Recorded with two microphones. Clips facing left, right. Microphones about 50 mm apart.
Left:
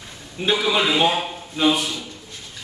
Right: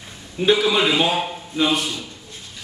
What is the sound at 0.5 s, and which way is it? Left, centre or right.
Speech, centre.